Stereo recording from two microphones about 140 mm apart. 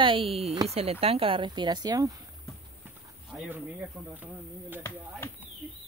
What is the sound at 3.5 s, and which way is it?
Speech, 10° right (ahead or behind).